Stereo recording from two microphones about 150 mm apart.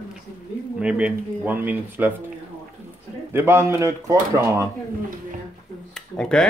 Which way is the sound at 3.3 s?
15° right (ahead or behind).